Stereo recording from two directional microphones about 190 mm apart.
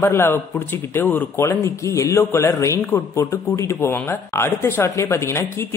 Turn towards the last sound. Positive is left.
turn(degrees=15)  # may be behind; listen again after turning